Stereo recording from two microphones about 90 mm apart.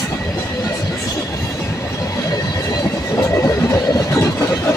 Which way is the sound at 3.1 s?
35° left (ahead or behind).